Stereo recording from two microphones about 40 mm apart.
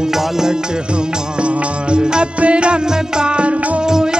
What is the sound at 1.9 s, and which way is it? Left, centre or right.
Music, right.